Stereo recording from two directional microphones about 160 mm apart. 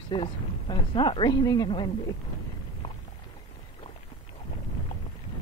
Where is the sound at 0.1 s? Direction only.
30° left (ahead or behind).